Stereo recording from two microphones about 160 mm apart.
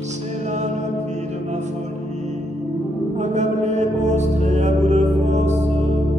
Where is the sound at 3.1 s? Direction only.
45° right (ahead or behind).